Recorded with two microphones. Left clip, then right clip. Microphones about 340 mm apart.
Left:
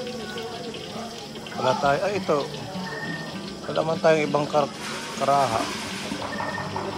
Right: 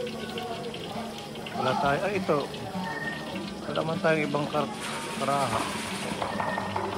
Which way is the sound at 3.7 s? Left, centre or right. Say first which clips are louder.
Left 6 dB; centre.